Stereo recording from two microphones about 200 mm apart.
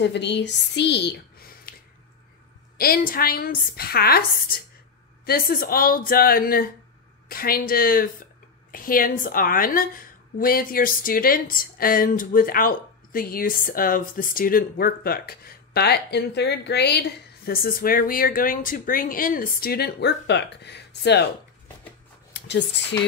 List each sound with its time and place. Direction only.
0.0 s a woman's voice: 60° left (ahead or behind)
2.8 s a woman's voice: 45° left (ahead or behind)
17.5 s a woman's voice: 45° left (ahead or behind)
22.3 s speech: 60° left (ahead or behind)